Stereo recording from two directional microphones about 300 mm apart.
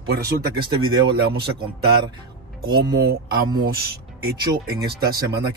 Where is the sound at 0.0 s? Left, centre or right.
Right.